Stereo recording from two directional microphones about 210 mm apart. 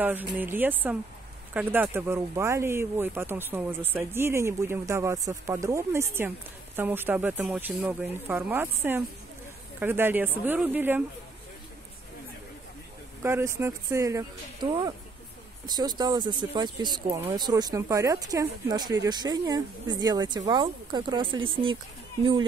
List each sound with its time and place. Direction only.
0.0 s speech: 10° right (ahead or behind)
13.2 s speech: 10° right (ahead or behind)